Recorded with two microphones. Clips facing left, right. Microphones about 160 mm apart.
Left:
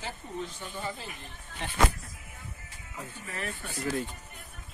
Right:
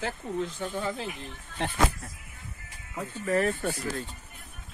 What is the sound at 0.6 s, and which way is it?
Speech, 90° right.